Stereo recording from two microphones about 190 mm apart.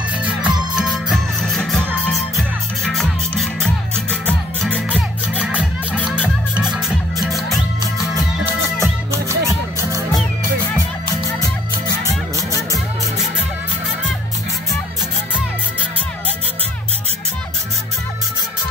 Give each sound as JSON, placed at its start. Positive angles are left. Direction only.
{"t": 0.2, "sound": "music", "side_deg": -5}
{"t": 4.6, "sound": "music", "side_deg": -10}
{"t": 9.1, "sound": "music", "side_deg": -15}